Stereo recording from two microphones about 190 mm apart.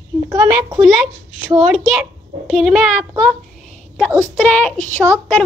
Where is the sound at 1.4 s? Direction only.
Centre (ahead or behind).